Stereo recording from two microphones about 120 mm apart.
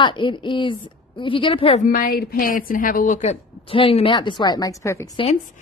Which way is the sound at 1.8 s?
90° left.